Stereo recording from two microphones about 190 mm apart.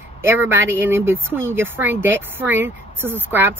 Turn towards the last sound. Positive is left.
turn(degrees=-10)  # may be behind; listen again after turning